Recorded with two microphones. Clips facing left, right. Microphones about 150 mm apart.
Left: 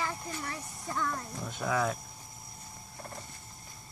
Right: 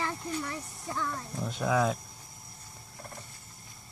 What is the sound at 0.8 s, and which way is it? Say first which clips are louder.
Speech: left 1 dB; 10° right (ahead or behind).